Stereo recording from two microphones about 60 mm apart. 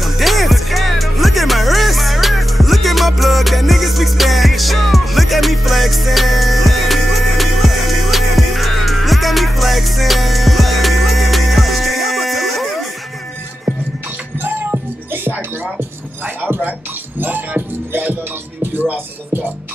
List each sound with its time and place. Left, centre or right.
0.0 s music: centre
14.4 s music: right